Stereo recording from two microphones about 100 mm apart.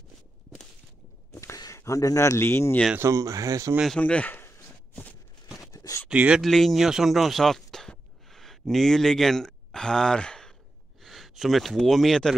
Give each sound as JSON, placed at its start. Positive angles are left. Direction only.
{"t": 1.3, "sound": "a sound", "side_deg": 30}
{"t": 1.6, "sound": "speech", "side_deg": 30}
{"t": 3.0, "sound": "speech", "side_deg": -30}
{"t": 4.0, "sound": "speech", "side_deg": 15}
{"t": 5.6, "sound": "a sound", "side_deg": 35}
{"t": 6.0, "sound": "speech", "side_deg": -10}
{"t": 6.4, "sound": "speech", "side_deg": 5}